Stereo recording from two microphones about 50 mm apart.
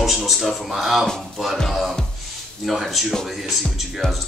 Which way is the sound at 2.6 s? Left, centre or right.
Centre.